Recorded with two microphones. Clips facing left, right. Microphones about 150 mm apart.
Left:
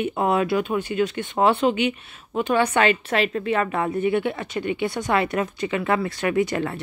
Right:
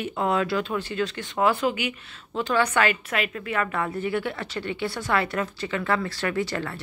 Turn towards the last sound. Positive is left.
turn(degrees=20)  # may be behind; listen again after turning